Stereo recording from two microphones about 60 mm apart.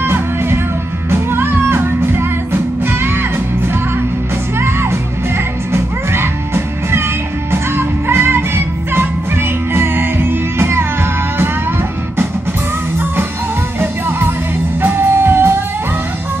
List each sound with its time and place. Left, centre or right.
0.0 s music: right
4.6 s music: right
13.7 s music: right